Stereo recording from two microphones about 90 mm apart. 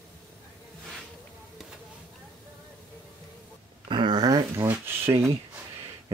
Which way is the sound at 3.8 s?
65° right (ahead or behind).